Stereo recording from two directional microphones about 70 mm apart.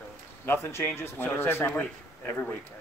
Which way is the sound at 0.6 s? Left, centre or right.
Left.